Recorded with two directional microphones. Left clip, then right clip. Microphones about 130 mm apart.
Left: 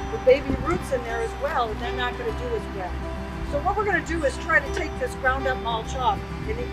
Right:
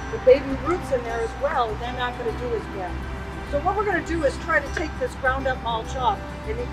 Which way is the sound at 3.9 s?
5° left (ahead or behind).